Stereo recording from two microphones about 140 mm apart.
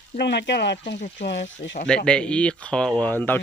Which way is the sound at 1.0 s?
55° left (ahead or behind).